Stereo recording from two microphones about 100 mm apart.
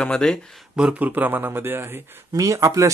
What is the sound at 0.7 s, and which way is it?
A man's voice, 10° right (ahead or behind).